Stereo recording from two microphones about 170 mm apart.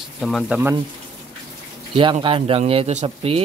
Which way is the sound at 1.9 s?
30° right (ahead or behind).